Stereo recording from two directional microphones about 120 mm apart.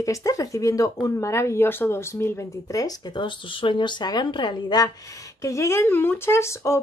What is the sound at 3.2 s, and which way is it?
Speech, 45° left (ahead or behind).